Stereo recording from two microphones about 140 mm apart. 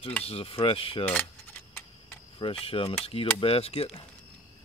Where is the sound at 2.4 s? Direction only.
40° left (ahead or behind).